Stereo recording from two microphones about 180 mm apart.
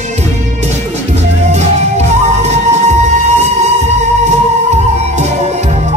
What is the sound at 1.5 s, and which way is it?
Music, 40° right (ahead or behind).